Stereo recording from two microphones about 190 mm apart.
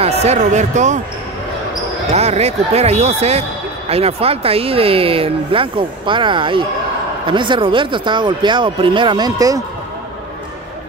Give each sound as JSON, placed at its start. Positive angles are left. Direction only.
{"t": 0.0, "sound": "speech", "side_deg": -35}
{"t": 2.1, "sound": "speech", "side_deg": -35}